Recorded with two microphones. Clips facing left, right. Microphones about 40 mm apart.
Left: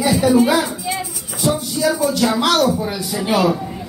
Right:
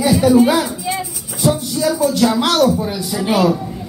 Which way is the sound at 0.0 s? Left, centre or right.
Centre.